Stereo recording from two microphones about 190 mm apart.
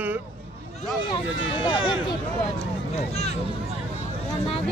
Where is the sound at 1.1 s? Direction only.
25° left (ahead or behind).